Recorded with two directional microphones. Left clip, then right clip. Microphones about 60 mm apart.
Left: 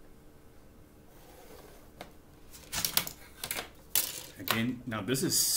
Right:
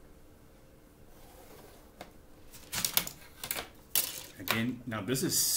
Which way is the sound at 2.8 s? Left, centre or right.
Centre.